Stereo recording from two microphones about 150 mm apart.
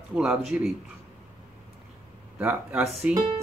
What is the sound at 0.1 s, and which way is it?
Speech, 5° right (ahead or behind).